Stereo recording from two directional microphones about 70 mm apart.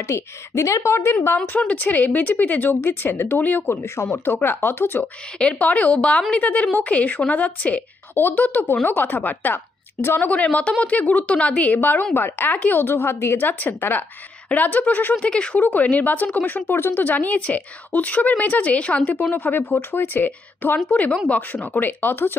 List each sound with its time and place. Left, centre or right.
0.1 s a woman's voice: left
1.2 s speech: left
5.4 s a woman's voice: centre